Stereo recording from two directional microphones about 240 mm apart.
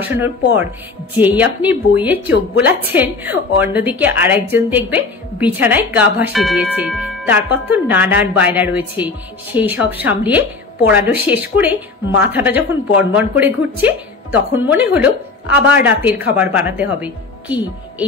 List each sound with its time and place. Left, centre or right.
0.0 s a woman's voice: centre